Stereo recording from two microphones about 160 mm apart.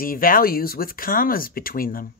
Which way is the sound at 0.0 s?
60° left (ahead or behind).